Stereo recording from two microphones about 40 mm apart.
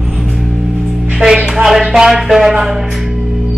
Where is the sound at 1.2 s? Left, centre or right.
Right.